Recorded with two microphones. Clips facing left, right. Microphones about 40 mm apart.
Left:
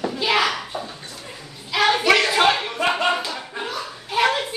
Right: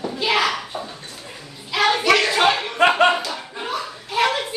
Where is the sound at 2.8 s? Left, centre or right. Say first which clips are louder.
Right 6 dB; right.